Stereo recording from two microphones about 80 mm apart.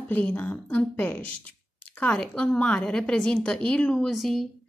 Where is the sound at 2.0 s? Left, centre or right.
Centre.